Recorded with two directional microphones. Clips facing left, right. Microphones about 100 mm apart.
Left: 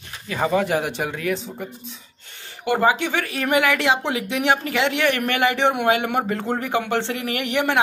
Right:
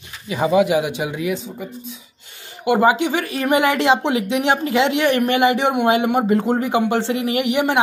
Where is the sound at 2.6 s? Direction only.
15° right (ahead or behind).